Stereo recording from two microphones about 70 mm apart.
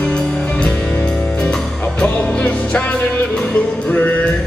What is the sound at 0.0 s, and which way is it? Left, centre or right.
Music, centre.